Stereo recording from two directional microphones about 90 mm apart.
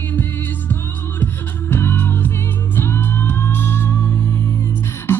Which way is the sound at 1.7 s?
25° left (ahead or behind).